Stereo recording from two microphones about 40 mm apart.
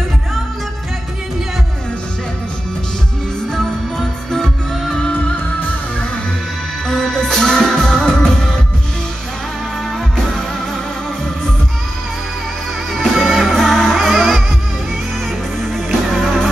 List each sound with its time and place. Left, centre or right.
4.3 s music: centre
6.9 s music: centre
12.9 s music: centre
15.6 s music: centre